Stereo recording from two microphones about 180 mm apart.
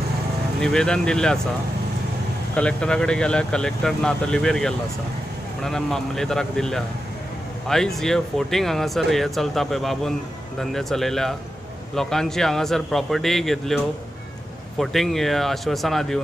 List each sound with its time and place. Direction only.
0.6 s speech: 5° left (ahead or behind)
2.5 s speech: 5° left (ahead or behind)
14.8 s speech: centre (ahead or behind)